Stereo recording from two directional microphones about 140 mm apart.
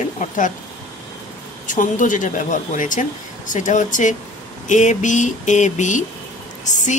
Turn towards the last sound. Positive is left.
turn(degrees=60)  # may be behind; listen again after turning